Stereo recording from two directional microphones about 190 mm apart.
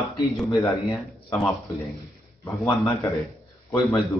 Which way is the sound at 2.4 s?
15° left (ahead or behind).